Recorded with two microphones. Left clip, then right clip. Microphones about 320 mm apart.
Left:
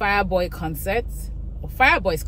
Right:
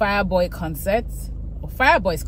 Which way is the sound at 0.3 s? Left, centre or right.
Centre.